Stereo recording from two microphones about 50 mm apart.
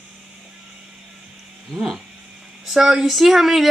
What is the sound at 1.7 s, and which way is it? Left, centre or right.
Speech, centre.